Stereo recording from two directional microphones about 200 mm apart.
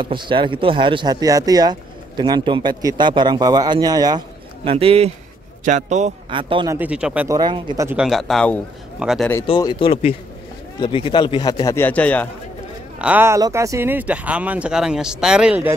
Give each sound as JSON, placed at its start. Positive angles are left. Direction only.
{"t": 0.0, "sound": "a man's voice", "side_deg": -25}
{"t": 6.8, "sound": "speech", "side_deg": -5}
{"t": 7.2, "sound": "speech", "side_deg": -20}
{"t": 8.0, "sound": "speech", "side_deg": 0}
{"t": 9.5, "sound": "a man's voice", "side_deg": 25}
{"t": 13.0, "sound": "speech", "side_deg": -10}